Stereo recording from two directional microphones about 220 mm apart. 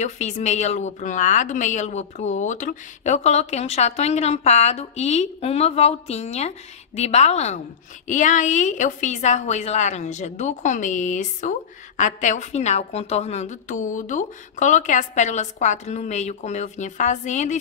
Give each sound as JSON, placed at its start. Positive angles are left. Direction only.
{"t": 0.0, "sound": "a woman's voice", "side_deg": 30}